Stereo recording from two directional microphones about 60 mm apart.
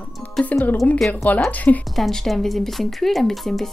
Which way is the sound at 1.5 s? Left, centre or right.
Left.